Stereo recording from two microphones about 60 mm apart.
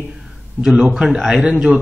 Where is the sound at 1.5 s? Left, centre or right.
Right.